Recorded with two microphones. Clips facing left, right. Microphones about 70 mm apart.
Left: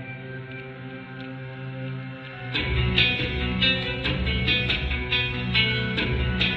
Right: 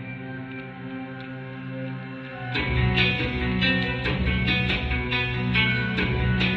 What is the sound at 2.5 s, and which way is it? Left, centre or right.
Music, right.